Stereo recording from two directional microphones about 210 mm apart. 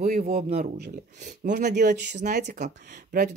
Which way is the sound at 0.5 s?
50° right (ahead or behind).